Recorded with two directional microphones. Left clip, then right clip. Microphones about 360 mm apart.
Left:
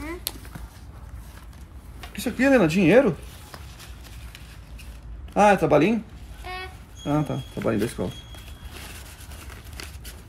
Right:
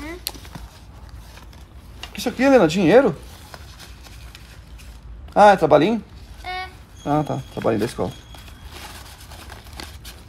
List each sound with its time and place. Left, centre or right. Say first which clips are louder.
2.1 s speech: right 4 dB; centre
5.3 s speech: right 5 dB; centre
7.1 s speech: right 5 dB; centre